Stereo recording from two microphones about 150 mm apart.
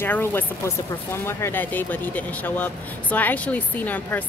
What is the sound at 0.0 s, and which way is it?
Speech, 15° left (ahead or behind).